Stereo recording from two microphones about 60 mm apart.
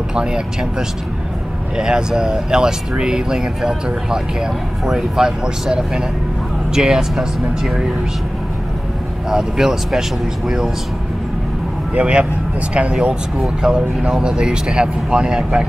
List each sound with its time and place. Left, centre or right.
0.1 s speech: centre
9.3 s speech: centre
11.9 s speech: centre
13.4 s speech: centre